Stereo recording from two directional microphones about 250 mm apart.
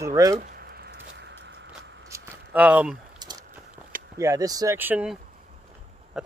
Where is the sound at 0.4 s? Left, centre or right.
Right.